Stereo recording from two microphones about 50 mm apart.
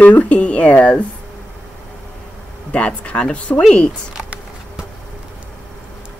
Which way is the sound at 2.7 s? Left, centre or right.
Left.